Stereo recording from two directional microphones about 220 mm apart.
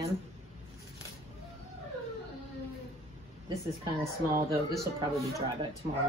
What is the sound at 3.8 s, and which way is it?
Speech, 25° right (ahead or behind).